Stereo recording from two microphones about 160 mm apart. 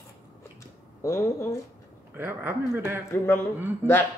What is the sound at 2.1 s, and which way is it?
Speech, 10° right (ahead or behind).